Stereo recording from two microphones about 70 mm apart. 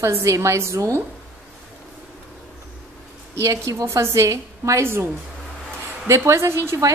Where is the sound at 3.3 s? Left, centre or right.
Right.